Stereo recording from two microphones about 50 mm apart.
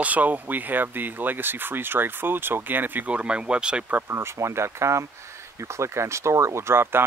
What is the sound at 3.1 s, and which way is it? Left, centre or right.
Speech, right.